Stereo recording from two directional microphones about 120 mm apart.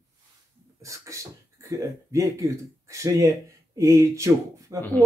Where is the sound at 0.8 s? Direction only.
25° right (ahead or behind).